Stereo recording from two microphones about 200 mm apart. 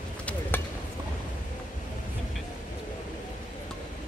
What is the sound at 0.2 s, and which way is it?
Chop, 5° left (ahead or behind).